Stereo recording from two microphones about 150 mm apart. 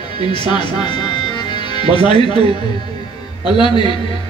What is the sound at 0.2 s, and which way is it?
Speech, 30° left (ahead or behind).